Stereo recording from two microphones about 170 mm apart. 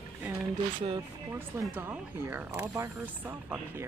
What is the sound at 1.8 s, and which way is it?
Speech, 10° right (ahead or behind).